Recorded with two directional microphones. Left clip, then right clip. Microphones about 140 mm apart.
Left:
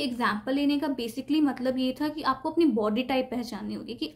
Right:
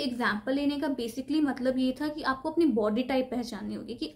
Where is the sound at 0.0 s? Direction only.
25° left (ahead or behind).